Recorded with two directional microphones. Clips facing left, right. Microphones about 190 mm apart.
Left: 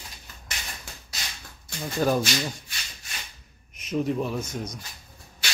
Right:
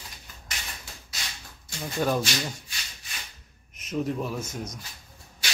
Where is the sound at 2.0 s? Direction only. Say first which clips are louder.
Left 3 dB; 5° left (ahead or behind).